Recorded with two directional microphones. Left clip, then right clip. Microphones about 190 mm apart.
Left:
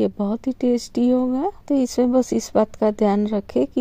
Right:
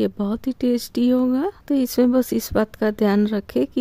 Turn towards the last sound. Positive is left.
turn(degrees=-20)  # may be behind; listen again after turning